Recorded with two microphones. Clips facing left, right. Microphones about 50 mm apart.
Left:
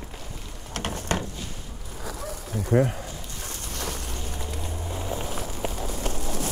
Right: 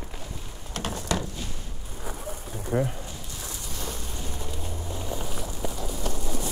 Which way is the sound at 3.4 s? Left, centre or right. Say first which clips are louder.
Left 3 dB; left.